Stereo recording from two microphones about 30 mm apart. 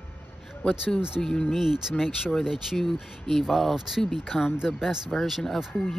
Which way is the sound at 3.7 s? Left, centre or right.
Centre.